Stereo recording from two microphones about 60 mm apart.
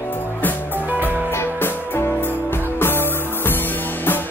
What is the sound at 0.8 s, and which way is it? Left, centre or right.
Music, right.